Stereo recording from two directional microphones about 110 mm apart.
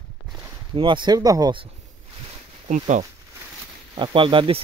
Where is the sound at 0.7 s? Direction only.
45° right (ahead or behind).